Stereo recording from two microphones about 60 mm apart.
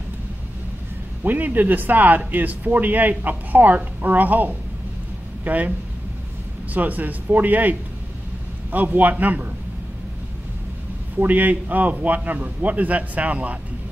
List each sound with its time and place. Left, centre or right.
1.2 s speech: right
6.7 s a man's voice: right
8.7 s a man's voice: right
11.1 s a man's voice: right